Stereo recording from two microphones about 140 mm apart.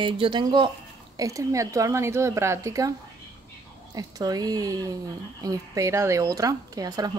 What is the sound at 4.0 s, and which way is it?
Speech, 25° right (ahead or behind).